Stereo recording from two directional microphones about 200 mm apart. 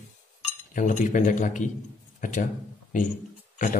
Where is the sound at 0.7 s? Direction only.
40° left (ahead or behind).